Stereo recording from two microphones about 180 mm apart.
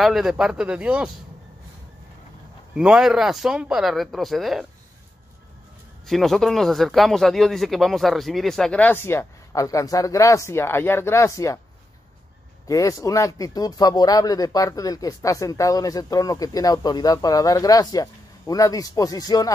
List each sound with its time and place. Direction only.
0.0 s speech: centre (ahead or behind)
2.7 s speech: 5° right (ahead or behind)
6.0 s speech: centre (ahead or behind); by 11.6 s 15° left (ahead or behind)
12.6 s speech: 20° left (ahead or behind)